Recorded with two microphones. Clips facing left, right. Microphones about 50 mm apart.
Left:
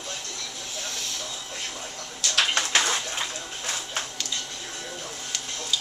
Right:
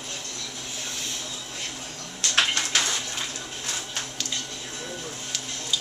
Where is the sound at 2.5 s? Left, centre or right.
Left.